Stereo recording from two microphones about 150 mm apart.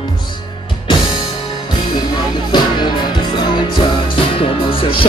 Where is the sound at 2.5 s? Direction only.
30° left (ahead or behind).